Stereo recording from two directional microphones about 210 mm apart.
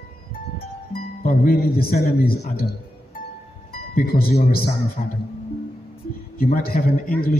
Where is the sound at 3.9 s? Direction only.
45° left (ahead or behind).